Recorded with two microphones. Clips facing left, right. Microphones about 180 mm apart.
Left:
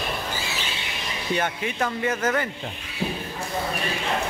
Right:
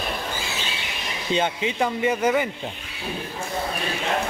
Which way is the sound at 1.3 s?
20° right (ahead or behind).